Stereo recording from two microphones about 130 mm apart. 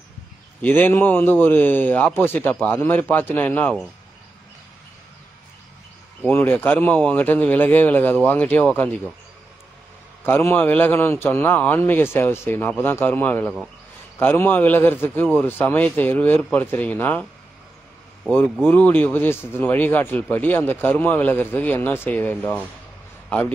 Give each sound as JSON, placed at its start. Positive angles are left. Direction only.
{"t": 0.6, "sound": "speech", "side_deg": 15}
{"t": 6.2, "sound": "speech", "side_deg": 15}
{"t": 10.2, "sound": "speech", "side_deg": 15}
{"t": 18.7, "sound": "speech", "side_deg": 15}